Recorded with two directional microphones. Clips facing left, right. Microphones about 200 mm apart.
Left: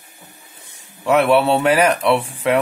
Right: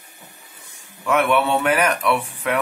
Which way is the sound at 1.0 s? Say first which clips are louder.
Left 4 dB; 30° left (ahead or behind).